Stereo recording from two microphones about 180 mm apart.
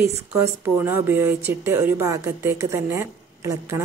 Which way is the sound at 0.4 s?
15° right (ahead or behind).